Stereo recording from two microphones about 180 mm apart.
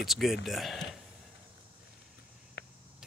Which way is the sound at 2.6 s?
70° left (ahead or behind).